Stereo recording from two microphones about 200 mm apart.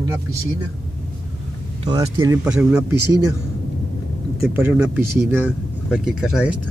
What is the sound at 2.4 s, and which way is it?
Speech, 5° right (ahead or behind).